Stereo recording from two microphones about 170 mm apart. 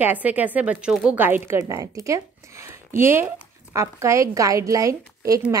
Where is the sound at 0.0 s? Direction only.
10° right (ahead or behind).